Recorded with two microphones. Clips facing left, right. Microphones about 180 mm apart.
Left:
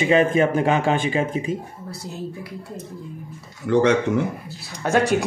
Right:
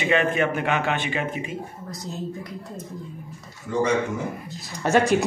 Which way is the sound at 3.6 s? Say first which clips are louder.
Left 5 dB; 75° left (ahead or behind).